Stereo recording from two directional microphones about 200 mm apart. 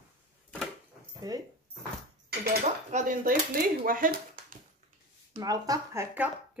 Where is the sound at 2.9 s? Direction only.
40° right (ahead or behind).